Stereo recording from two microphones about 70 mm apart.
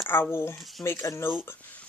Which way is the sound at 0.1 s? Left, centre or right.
Left.